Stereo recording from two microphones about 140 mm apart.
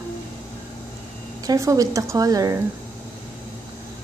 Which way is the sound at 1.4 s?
25° right (ahead or behind).